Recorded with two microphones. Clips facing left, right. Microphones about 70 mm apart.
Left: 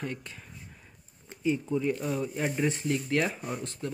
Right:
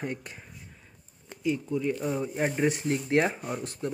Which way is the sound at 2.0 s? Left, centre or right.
Right.